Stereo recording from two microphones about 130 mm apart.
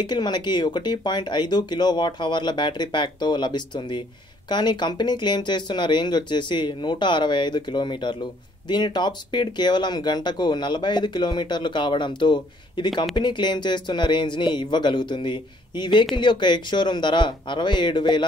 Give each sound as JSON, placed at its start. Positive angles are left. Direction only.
{"t": 0.0, "sound": "speech", "side_deg": 35}